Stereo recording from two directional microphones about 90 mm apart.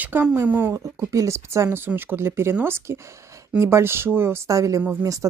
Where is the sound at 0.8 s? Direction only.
35° right (ahead or behind).